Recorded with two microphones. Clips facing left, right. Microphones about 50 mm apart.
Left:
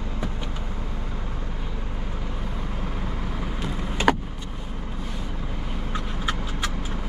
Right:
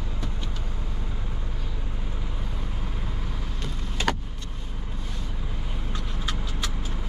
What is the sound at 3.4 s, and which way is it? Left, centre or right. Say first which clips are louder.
Vehicle: left 6 dB; centre.